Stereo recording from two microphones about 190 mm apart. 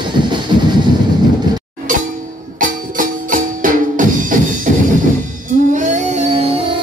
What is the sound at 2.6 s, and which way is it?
Music, 45° right (ahead or behind).